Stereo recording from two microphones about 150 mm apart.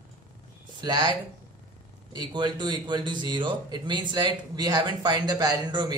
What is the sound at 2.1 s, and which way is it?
A man's voice, 30° right (ahead or behind).